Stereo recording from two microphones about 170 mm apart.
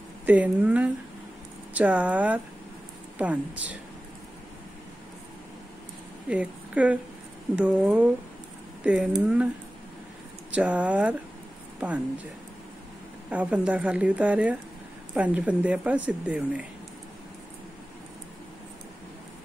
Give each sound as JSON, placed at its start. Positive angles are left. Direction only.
{"t": 0.3, "sound": "speech", "side_deg": -10}
{"t": 6.2, "sound": "speech", "side_deg": -5}
{"t": 10.5, "sound": "speech", "side_deg": -10}
{"t": 13.3, "sound": "speech", "side_deg": -10}